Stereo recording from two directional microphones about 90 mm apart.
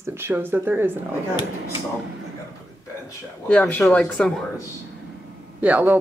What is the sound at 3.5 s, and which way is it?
Speech, 15° left (ahead or behind).